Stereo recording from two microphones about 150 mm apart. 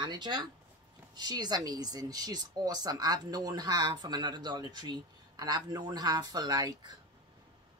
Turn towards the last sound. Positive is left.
turn(degrees=-25)  # may be behind; listen again after turning